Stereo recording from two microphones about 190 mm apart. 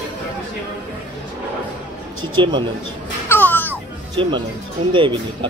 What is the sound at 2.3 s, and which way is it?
Speech, 25° right (ahead or behind).